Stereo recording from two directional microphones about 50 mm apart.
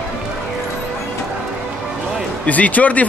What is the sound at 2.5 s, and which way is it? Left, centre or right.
Speech, left.